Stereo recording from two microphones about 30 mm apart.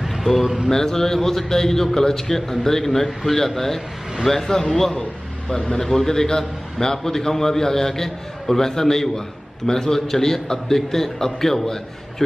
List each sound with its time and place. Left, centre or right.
0.0 s a sound: centre
0.7 s a man's voice: centre
5.5 s a man's voice: left